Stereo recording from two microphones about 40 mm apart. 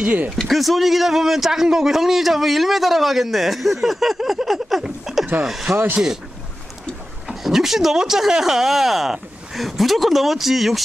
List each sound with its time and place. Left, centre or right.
0.0 s speech: right
0.4 s a man's voice: centre
5.1 s a sound: centre
5.4 s speech: centre
7.2 s speech: centre